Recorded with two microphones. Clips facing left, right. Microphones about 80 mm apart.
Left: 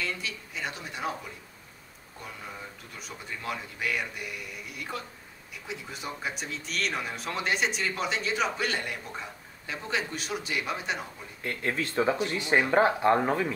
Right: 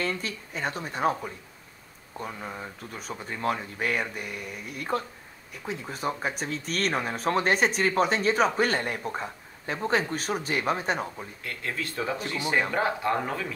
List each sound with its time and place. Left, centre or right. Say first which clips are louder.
0.0 s speech: right 4 dB; right
11.4 s speech: left 4 dB; left